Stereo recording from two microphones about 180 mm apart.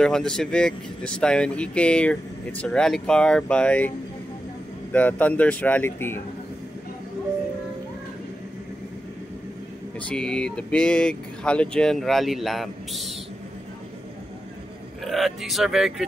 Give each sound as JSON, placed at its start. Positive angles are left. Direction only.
{"t": 0.0, "sound": "speech", "side_deg": 5}
{"t": 4.9, "sound": "speech", "side_deg": 10}
{"t": 9.9, "sound": "speech", "side_deg": 5}
{"t": 15.0, "sound": "speech", "side_deg": 0}